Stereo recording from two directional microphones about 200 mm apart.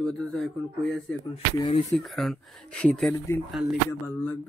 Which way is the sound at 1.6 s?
20° left (ahead or behind).